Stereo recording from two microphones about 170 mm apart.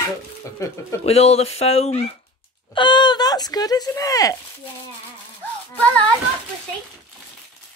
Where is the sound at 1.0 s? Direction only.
40° left (ahead or behind).